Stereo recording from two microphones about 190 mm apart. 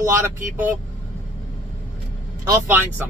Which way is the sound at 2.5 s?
10° right (ahead or behind).